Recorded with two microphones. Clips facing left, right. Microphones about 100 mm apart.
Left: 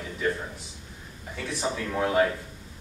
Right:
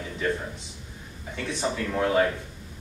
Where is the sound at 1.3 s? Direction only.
5° left (ahead or behind).